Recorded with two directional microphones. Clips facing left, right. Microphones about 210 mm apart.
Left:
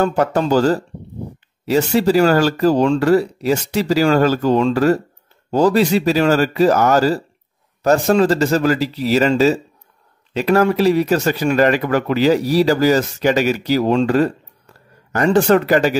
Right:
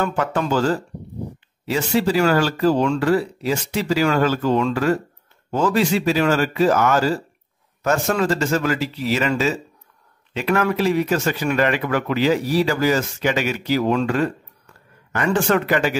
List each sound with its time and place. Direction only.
0.0 s speech: 40° left (ahead or behind)